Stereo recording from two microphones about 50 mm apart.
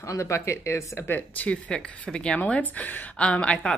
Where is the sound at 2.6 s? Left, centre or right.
Left.